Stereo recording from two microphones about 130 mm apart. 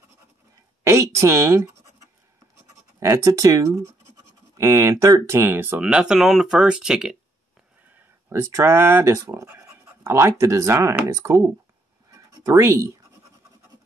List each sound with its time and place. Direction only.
0.8 s speech: 20° right (ahead or behind); by 7.2 s 5° right (ahead or behind)
8.3 s speech: 20° right (ahead or behind)
12.1 s a sound: 25° right (ahead or behind)